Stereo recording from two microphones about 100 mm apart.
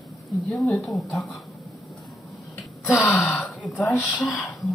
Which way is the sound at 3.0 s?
20° left (ahead or behind).